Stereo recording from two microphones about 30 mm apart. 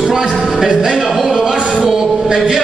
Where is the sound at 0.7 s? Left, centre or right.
Right.